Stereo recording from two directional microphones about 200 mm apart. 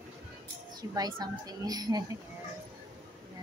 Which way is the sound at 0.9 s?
20° right (ahead or behind).